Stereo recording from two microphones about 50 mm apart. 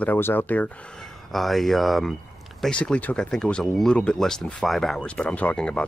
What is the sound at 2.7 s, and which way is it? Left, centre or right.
Speech, left.